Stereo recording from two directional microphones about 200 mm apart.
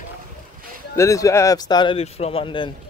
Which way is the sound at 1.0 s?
15° left (ahead or behind).